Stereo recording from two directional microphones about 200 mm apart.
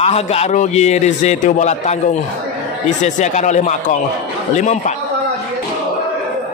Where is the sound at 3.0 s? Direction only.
35° left (ahead or behind).